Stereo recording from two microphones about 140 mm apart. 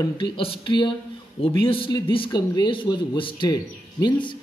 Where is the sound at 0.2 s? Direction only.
40° left (ahead or behind).